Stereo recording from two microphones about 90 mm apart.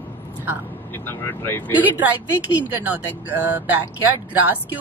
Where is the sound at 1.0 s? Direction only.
25° left (ahead or behind).